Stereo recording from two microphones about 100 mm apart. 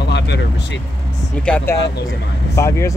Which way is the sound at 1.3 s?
10° left (ahead or behind).